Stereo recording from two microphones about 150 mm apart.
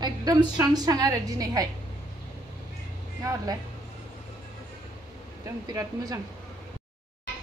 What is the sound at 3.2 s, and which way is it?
Speech, 25° right (ahead or behind).